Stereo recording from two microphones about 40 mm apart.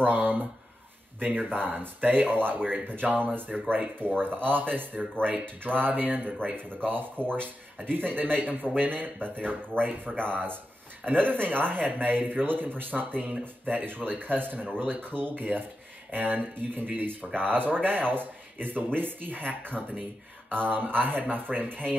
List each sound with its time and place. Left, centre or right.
0.0 s speech: right